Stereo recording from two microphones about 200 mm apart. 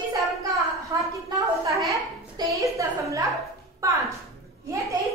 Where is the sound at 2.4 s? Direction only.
15° right (ahead or behind).